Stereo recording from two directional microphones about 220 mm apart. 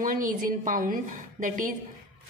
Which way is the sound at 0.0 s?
40° right (ahead or behind).